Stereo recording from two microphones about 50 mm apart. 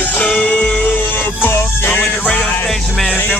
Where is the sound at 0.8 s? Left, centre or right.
Left.